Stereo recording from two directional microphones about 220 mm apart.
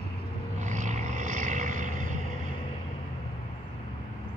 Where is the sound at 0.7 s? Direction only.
35° right (ahead or behind).